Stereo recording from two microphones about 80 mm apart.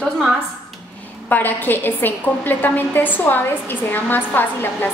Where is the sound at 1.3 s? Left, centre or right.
Left.